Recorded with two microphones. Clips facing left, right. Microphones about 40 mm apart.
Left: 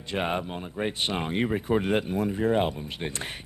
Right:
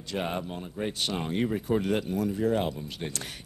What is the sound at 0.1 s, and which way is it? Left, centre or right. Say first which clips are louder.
Speech: left 3 dB; left.